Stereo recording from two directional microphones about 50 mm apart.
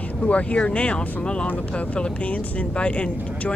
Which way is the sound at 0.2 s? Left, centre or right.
Left.